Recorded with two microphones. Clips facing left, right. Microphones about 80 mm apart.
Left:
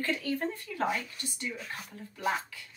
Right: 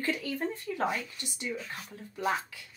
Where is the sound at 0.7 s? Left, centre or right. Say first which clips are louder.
Right 3 dB; right.